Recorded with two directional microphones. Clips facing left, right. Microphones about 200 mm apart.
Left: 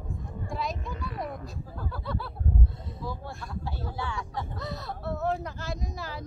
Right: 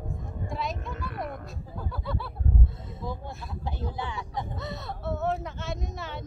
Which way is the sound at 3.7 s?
20° right (ahead or behind).